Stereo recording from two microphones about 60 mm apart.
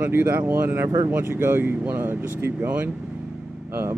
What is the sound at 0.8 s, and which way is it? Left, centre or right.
Speech, right.